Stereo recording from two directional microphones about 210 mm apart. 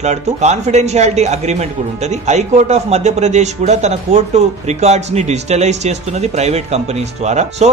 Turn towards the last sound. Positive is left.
turn(degrees=-30)  # may be behind; listen again after turning